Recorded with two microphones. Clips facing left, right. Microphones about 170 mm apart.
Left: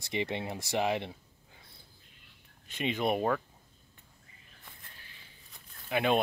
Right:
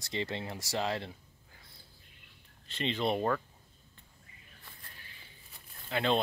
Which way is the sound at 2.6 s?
15° left (ahead or behind).